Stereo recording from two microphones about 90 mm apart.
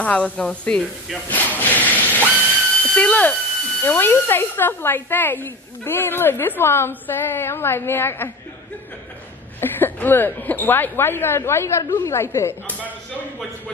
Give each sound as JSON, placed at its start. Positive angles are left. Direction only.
{"t": 0.0, "sound": "speech", "side_deg": 15}
{"t": 1.3, "sound": "a sound", "side_deg": 20}
{"t": 2.8, "sound": "speech", "side_deg": 15}
{"t": 9.6, "sound": "speech", "side_deg": 25}